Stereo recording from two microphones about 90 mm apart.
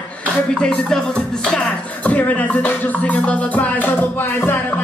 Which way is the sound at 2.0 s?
15° left (ahead or behind).